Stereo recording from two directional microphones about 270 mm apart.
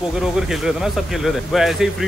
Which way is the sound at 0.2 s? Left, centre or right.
Centre.